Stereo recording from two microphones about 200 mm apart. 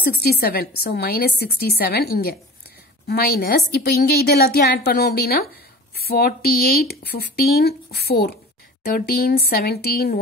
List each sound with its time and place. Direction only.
0.2 s speech: 50° left (ahead or behind)